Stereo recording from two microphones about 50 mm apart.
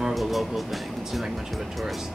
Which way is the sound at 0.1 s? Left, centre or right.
Centre.